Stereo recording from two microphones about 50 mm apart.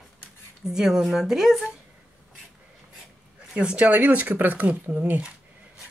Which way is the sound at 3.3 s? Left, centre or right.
Right.